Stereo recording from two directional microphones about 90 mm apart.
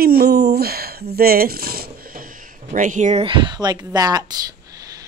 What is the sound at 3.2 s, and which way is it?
Speech, 65° right (ahead or behind).